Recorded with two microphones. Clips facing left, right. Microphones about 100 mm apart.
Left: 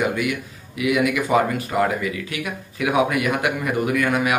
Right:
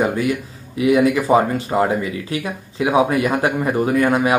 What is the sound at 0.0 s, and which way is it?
Speech, 35° right (ahead or behind).